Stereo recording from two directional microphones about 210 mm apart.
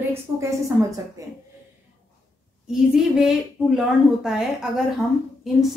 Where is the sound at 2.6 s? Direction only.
Centre (ahead or behind).